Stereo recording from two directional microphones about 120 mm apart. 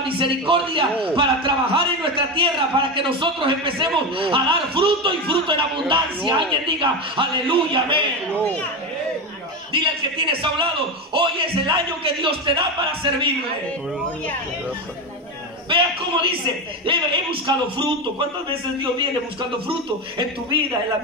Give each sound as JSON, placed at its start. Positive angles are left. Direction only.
{"t": 0.2, "sound": "a man's voice", "side_deg": -45}
{"t": 9.7, "sound": "a man's voice", "side_deg": -45}
{"t": 15.7, "sound": "a man's voice", "side_deg": -45}